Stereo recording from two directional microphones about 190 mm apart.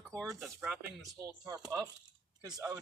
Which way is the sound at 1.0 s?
15° right (ahead or behind).